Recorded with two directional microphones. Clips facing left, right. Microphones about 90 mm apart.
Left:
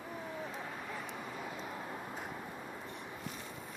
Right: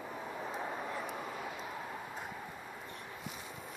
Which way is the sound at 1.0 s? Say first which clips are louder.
Right 3 dB; 15° right (ahead or behind).